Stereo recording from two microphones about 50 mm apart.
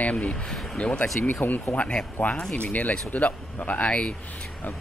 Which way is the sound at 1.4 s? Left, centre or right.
Left.